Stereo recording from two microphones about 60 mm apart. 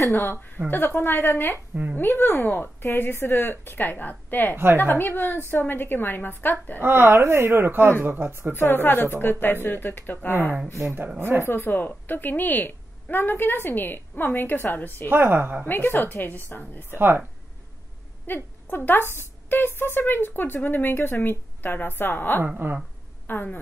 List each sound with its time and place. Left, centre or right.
0.1 s a woman's voice: left
6.8 s speech: right
8.5 s a woman's voice: left
11.1 s speech: right
11.4 s a woman's voice: left
15.0 s speech: right
15.6 s a woman's voice: left
18.2 s a woman's voice: left
22.6 s speech: right
23.2 s speech: left